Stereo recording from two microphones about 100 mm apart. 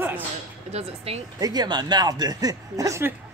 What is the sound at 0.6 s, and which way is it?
Speech, 90° right.